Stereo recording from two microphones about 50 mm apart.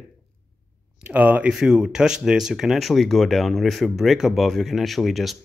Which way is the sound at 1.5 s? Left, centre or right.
Centre.